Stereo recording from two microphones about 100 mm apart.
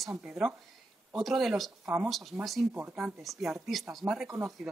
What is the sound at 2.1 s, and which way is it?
Speech, centre (ahead or behind).